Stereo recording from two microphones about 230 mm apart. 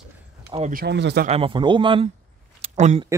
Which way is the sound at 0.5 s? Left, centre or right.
Right.